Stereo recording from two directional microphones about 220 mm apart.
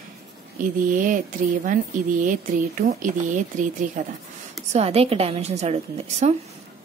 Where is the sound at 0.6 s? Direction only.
40° right (ahead or behind).